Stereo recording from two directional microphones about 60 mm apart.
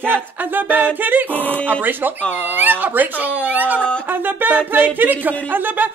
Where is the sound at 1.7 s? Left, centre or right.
Right.